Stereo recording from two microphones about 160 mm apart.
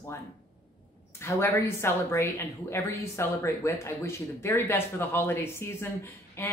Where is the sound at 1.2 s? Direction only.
15° left (ahead or behind).